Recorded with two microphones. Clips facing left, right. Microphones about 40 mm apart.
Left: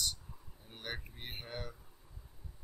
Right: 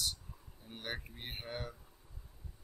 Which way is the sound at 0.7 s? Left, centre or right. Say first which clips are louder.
Right 1 dB; centre.